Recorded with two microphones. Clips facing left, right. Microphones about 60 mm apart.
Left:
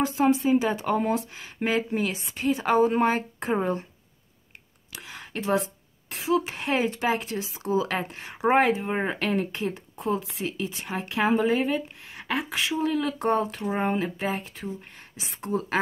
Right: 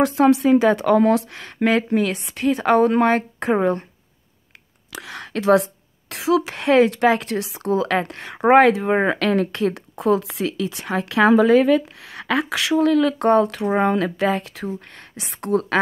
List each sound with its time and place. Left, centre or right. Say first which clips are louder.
0.0 s a woman's voice: right 7 dB; right
4.9 s speech: right 7 dB; right